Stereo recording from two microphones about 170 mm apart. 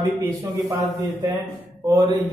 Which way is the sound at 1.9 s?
25° right (ahead or behind).